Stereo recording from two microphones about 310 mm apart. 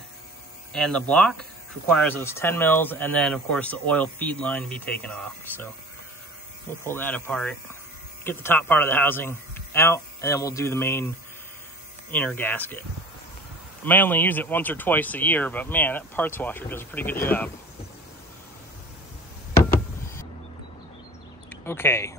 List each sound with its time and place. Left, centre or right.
0.7 s speech: centre
6.8 s a man's voice: centre
13.8 s speech: centre
21.5 s speech: centre